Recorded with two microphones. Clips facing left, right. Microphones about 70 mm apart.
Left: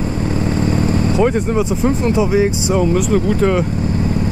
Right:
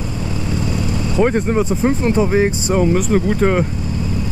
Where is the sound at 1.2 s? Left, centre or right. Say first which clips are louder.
Right 2 dB; right.